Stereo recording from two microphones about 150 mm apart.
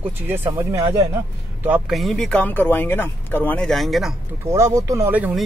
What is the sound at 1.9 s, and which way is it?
Speech, centre (ahead or behind).